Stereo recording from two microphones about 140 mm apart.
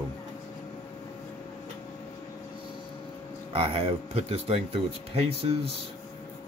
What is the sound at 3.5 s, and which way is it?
Speech, 45° right (ahead or behind).